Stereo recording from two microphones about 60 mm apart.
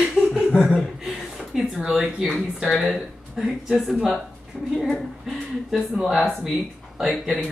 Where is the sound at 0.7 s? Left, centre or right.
Centre.